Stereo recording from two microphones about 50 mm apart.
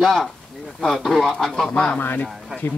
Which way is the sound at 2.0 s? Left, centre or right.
Left.